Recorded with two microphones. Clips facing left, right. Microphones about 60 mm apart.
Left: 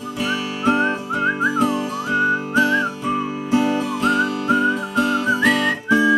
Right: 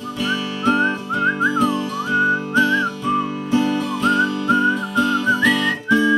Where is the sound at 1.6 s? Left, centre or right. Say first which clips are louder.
Even; centre.